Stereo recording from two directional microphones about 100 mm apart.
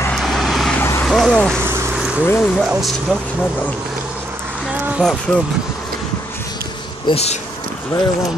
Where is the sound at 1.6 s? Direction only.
25° right (ahead or behind).